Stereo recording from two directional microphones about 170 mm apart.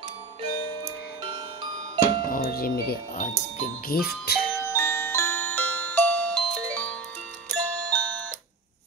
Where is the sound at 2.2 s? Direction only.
55° left (ahead or behind).